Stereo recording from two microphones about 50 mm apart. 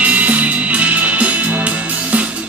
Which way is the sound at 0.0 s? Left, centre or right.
Right.